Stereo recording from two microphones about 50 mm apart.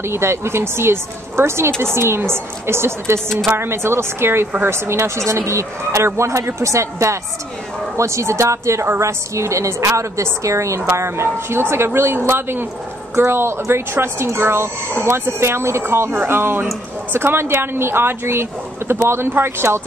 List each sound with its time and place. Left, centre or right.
0.0 s a woman's voice: right